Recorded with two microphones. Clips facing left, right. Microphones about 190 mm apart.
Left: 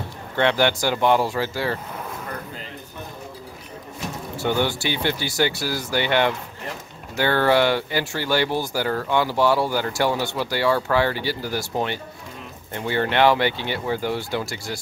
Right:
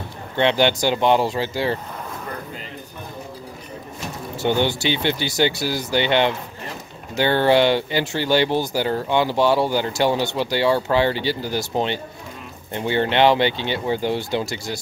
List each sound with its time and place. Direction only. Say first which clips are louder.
0.4 s speech: right 2 dB; 20° right (ahead or behind)
4.4 s speech: right 2 dB; 25° right (ahead or behind)